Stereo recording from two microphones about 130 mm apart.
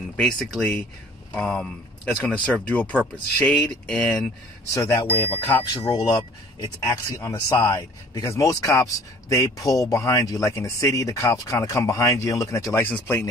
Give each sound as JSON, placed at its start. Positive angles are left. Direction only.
{"t": 0.2, "sound": "speech", "side_deg": 5}
{"t": 4.6, "sound": "speech", "side_deg": 25}
{"t": 5.7, "sound": "speech", "side_deg": 30}